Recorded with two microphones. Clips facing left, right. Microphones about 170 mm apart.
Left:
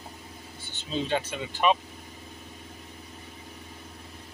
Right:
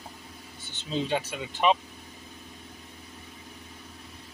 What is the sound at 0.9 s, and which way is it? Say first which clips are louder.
Speech: even; 15° right (ahead or behind).